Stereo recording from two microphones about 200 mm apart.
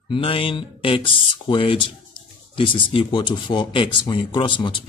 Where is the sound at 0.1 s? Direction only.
25° left (ahead or behind).